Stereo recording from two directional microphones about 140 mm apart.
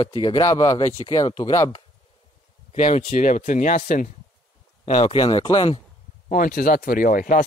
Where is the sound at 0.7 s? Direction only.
35° left (ahead or behind).